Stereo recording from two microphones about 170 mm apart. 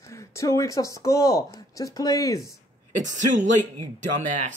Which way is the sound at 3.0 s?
45° right (ahead or behind).